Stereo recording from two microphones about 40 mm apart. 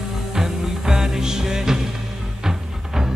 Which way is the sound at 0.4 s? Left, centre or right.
Centre.